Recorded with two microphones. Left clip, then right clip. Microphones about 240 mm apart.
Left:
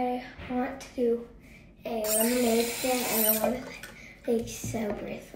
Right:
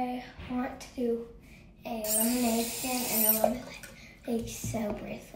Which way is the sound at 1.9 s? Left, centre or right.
Centre.